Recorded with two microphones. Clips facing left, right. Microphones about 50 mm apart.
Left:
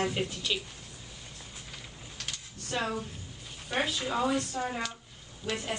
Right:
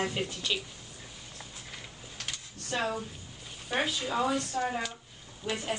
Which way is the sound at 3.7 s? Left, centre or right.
Centre.